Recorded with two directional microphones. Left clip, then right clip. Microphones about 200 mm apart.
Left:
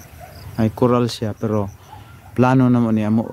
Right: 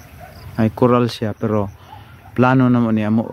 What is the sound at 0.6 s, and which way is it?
Speech, 5° right (ahead or behind).